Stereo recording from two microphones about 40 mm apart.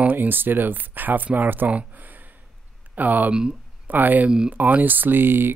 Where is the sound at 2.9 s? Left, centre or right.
Right.